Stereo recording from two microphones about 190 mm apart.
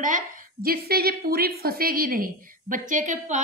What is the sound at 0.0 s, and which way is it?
A woman's voice, 45° right (ahead or behind).